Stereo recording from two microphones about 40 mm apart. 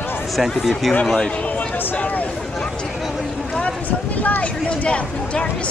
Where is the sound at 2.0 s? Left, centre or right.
Left.